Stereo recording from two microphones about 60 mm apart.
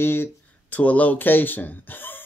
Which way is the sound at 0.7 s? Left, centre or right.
Left.